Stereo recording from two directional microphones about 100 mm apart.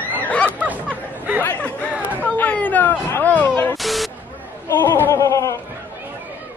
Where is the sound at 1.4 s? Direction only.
15° left (ahead or behind).